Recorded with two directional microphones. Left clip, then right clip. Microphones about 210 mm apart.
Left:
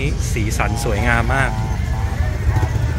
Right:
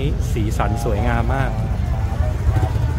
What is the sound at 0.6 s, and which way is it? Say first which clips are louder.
Speech: left 1 dB; 10° right (ahead or behind).